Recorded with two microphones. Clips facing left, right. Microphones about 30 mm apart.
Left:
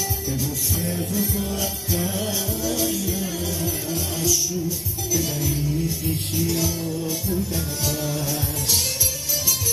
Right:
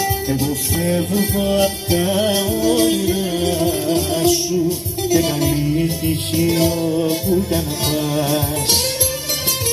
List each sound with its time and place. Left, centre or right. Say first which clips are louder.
0.0 s music: right 8 dB; right